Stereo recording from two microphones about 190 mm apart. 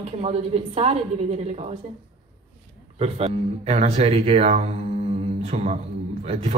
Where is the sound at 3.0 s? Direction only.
35° right (ahead or behind).